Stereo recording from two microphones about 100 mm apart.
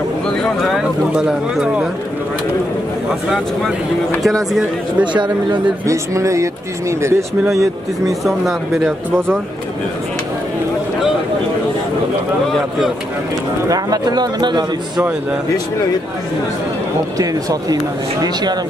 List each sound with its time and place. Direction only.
0.4 s speech: centre (ahead or behind)
5.0 s speech: 50° right (ahead or behind)
5.9 s speech: 30° right (ahead or behind)
8.1 s speech: centre (ahead or behind)
13.7 s speech: 40° right (ahead or behind)
17.2 s speech: 35° right (ahead or behind)